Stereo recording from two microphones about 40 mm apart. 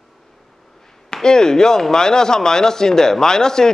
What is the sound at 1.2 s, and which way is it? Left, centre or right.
Speech, centre.